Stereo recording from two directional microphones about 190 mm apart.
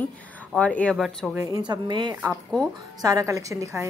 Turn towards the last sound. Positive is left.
turn(degrees=-15)  # may be behind; listen again after turning